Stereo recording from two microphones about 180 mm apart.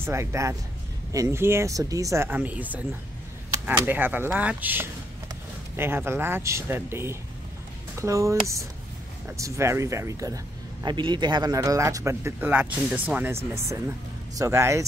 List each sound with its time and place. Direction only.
0.0 s speech: 15° right (ahead or behind)